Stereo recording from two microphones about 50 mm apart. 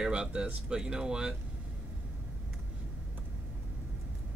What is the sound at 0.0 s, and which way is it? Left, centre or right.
A man's voice, centre.